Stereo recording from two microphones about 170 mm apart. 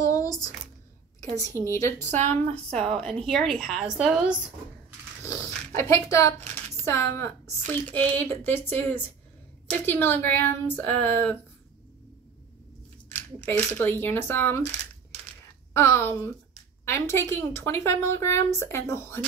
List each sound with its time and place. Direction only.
0.0 s a sound: 20° left (ahead or behind)
1.6 s a woman's voice: 15° left (ahead or behind)
2.0 s speech: 45° right (ahead or behind)
2.9 s a woman's voice: 5° left (ahead or behind)
5.2 s a sound: 15° left (ahead or behind)
5.7 s a woman's voice: 15° left (ahead or behind)
13.5 s a woman's voice: 10° left (ahead or behind)
15.7 s a woman's voice: 15° left (ahead or behind)